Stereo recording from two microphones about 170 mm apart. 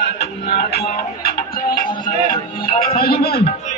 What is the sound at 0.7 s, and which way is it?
Music, 60° left (ahead or behind).